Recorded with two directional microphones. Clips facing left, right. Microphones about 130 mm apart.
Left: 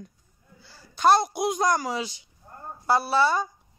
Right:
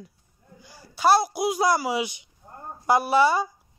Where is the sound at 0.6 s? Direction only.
15° right (ahead or behind).